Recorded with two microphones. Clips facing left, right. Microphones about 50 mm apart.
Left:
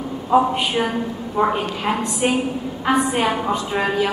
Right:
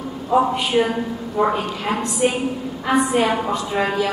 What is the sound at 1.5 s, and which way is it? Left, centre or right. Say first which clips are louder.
Speech: left 1 dB; left.